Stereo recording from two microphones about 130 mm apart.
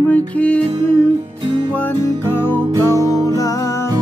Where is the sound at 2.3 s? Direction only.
15° left (ahead or behind).